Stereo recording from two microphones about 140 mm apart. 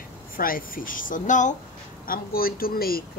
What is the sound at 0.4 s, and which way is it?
Speech, 90° left.